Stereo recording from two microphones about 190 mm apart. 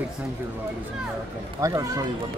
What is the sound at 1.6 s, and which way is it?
Speech, 15° right (ahead or behind).